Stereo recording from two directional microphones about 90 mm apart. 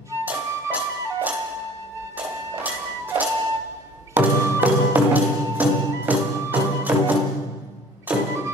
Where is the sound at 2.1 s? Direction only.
20° right (ahead or behind).